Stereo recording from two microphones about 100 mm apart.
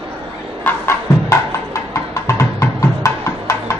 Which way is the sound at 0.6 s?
30° left (ahead or behind).